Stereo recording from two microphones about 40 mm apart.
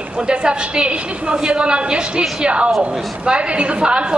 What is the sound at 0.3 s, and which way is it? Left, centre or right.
A woman's voice, right.